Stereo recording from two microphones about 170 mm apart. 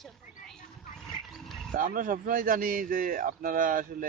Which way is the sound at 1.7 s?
55° right (ahead or behind).